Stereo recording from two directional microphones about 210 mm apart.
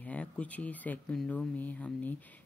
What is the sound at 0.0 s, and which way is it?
Speech, 5° left (ahead or behind).